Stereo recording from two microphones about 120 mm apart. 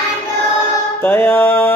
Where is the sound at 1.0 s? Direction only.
15° left (ahead or behind).